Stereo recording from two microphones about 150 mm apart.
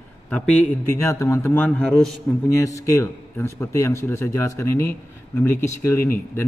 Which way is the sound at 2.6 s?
20° left (ahead or behind).